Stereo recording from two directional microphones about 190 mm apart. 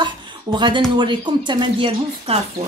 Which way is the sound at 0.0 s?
25° right (ahead or behind).